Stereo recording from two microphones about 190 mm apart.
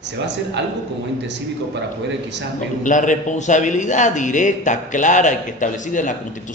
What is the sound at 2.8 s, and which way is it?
A man's voice, 40° left (ahead or behind).